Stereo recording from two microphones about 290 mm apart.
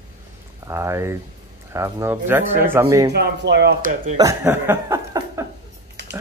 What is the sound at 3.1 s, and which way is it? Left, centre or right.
Speech, right.